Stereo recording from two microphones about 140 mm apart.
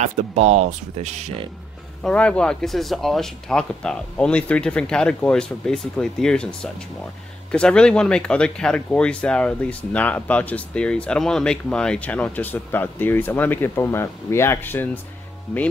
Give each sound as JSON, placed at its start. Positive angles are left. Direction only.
{"t": 0.0, "sound": "speech", "side_deg": -55}
{"t": 2.0, "sound": "speech", "side_deg": 10}